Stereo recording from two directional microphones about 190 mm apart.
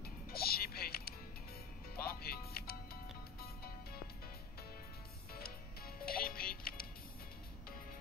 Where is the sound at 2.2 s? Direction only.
55° left (ahead or behind).